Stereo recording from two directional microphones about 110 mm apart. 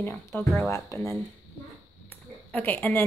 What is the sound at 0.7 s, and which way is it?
Speech, 25° left (ahead or behind).